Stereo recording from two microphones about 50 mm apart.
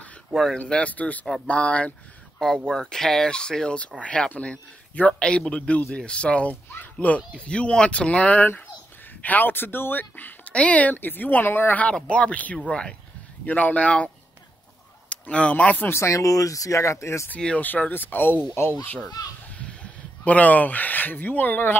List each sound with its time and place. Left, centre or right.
0.3 s speech: centre
0.6 s speech: left
2.4 s speech: centre; by 6.5 s left
6.7 s speech: left
10.5 s a woman's voice: left
11.9 s speech: left
13.5 s speech: left
15.9 s speech: left
17.6 s a woman's voice: left
19.4 s speech: left